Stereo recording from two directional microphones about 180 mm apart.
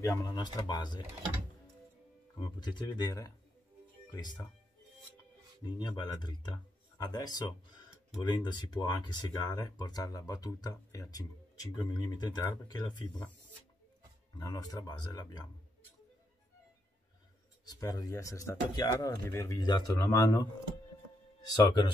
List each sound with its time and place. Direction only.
0.0 s speech: 20° left (ahead or behind)
2.4 s speech: 25° left (ahead or behind)
5.6 s speech: 25° left (ahead or behind)
14.4 s speech: 20° left (ahead or behind)
17.6 s speech: 20° left (ahead or behind)